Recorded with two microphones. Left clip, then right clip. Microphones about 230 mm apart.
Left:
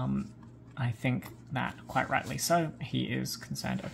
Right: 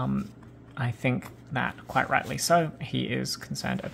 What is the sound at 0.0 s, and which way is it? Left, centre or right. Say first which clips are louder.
Speech: right 4 dB; centre.